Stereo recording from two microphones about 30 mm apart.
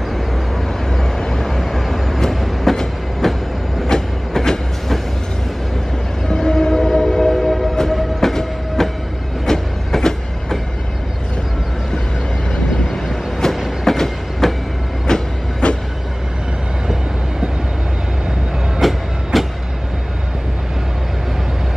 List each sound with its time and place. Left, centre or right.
0.8 s vehicle: centre
2.7 s train: centre
6.2 s train: left
12.9 s vehicle: centre
13.8 s train: centre
15.1 s train: left
15.6 s vehicle: left
18.8 s train: centre